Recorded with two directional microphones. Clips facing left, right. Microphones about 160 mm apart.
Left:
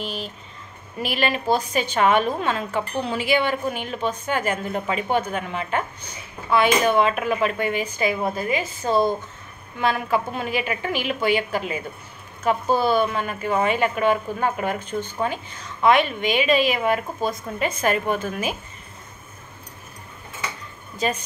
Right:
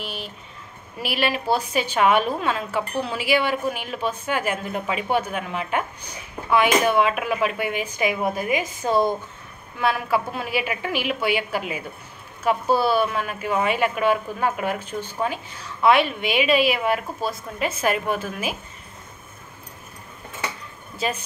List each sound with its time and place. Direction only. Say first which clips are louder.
0.9 s a woman's voice: left 1 dB; 5° right (ahead or behind)